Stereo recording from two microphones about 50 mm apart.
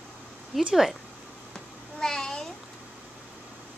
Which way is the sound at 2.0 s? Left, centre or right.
Centre.